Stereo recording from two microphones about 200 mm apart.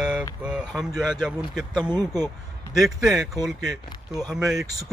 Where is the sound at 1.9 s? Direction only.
20° right (ahead or behind).